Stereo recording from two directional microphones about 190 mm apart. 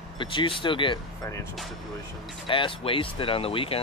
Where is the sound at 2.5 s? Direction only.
25° left (ahead or behind).